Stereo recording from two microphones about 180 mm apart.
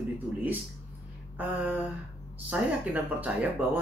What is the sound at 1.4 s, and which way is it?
Speech, 10° right (ahead or behind).